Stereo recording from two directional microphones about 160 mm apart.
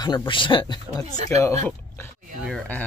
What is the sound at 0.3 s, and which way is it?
Speech, 30° left (ahead or behind).